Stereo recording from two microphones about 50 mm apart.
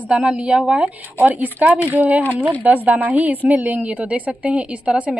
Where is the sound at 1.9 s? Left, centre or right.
Right.